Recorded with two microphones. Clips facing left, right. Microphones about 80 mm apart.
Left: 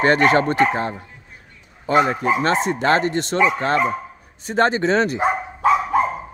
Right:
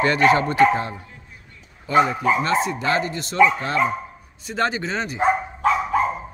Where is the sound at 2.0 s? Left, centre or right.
Left.